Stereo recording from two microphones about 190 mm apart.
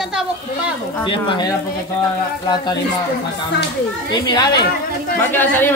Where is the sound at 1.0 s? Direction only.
25° left (ahead or behind).